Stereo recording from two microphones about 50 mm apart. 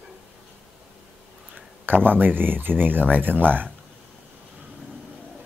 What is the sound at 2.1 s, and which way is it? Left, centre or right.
Speech, right.